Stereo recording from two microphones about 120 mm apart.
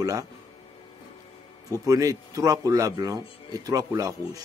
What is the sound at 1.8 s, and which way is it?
Speech, 30° right (ahead or behind).